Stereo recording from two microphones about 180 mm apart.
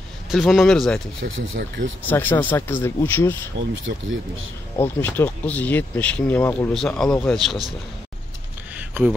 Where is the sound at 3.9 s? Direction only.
80° right.